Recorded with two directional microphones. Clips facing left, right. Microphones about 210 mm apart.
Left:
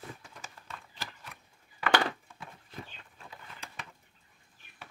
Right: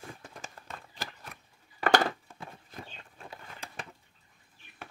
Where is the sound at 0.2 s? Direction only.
45° right (ahead or behind).